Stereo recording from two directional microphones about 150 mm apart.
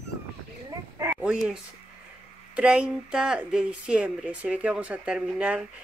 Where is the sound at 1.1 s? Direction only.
5° right (ahead or behind).